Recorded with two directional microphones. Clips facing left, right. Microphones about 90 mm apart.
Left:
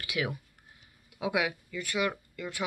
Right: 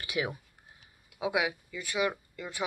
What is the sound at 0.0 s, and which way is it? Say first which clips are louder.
Speech: even; 25° right (ahead or behind).